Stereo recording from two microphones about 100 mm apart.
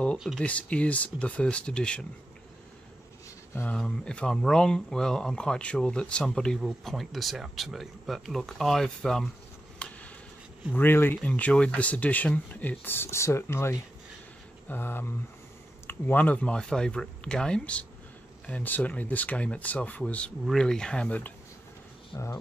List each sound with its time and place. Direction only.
0.4 s speech: 10° left (ahead or behind)
3.5 s speech: 15° left (ahead or behind)
9.8 s a sound: 15° left (ahead or behind)
10.7 s speech: 20° left (ahead or behind)